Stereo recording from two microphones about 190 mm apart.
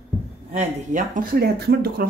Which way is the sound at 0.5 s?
40° right (ahead or behind).